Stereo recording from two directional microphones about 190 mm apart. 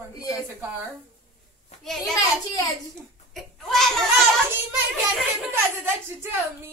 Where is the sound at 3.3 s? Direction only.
Centre (ahead or behind).